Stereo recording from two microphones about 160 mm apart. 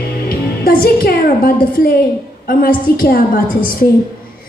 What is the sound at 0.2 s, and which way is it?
A woman's voice, 70° left (ahead or behind).